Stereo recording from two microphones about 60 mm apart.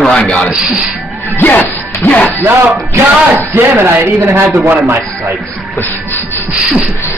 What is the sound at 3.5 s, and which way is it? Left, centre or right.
A man's voice, right.